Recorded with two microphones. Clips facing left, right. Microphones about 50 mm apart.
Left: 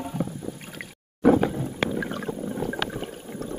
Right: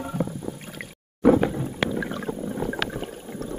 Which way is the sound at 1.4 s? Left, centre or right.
Centre.